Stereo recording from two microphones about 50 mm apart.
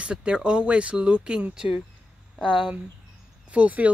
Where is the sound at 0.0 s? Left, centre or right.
Right.